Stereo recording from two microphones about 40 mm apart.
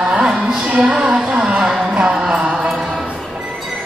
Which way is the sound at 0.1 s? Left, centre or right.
Centre.